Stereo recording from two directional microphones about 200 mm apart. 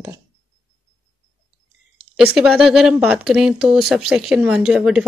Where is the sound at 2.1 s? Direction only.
5° right (ahead or behind).